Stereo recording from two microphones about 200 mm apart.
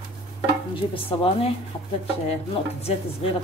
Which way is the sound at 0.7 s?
25° left (ahead or behind).